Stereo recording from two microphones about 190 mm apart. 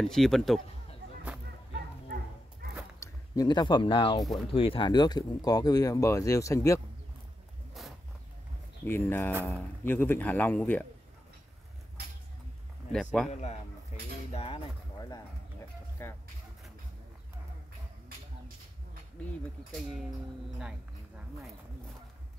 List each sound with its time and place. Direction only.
0.0 s speech: centre (ahead or behind)
3.0 s speech: 20° left (ahead or behind)
8.8 s a man's voice: 10° left (ahead or behind)
12.9 s speech: centre (ahead or behind)
13.3 s a man's voice: 35° left (ahead or behind)
13.9 s cutlery: 40° left (ahead or behind)
14.3 s a sound: 30° left (ahead or behind)
16.0 s a sound: 15° left (ahead or behind)
19.7 s speech: centre (ahead or behind)